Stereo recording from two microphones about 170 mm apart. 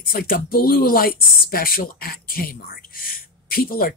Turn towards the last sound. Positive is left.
turn(degrees=60)  # may be behind; listen again after turning